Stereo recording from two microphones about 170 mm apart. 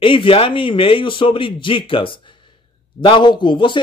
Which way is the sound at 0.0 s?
30° left (ahead or behind).